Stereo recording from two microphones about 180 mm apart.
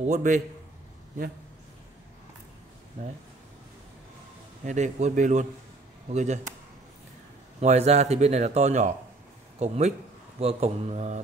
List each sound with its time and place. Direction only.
0.0 s speech: 40° right (ahead or behind)
4.6 s speech: 40° right (ahead or behind)
7.6 s speech: 40° right (ahead or behind)